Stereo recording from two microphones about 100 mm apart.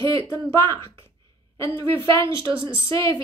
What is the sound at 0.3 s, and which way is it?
A woman's voice, 30° left (ahead or behind).